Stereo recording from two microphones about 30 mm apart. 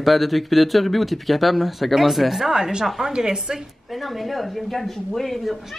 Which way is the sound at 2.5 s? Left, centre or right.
Right.